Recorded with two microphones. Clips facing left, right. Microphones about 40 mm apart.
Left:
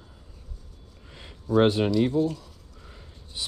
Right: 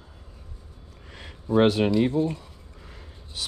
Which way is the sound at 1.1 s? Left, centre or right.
Right.